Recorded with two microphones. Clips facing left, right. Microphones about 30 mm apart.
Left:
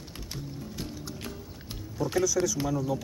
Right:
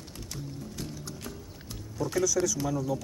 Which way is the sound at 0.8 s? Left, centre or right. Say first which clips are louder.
Left 1 dB; centre.